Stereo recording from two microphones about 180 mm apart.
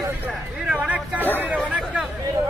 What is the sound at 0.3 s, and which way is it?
Hubbub, 5° right (ahead or behind).